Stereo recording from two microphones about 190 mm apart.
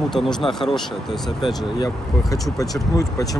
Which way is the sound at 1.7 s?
20° left (ahead or behind).